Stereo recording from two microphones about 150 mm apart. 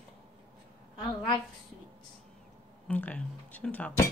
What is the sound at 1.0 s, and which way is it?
Speech, 30° left (ahead or behind).